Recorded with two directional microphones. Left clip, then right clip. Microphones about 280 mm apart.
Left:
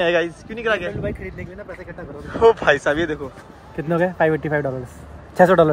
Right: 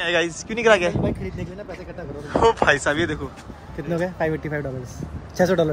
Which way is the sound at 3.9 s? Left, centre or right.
Left.